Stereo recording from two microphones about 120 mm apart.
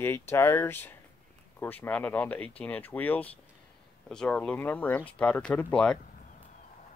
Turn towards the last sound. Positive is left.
turn(degrees=10)  # may be behind; listen again after turning